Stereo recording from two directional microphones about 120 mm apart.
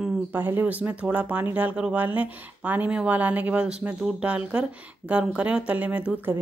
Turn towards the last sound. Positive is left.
turn(degrees=-15)  # may be behind; listen again after turning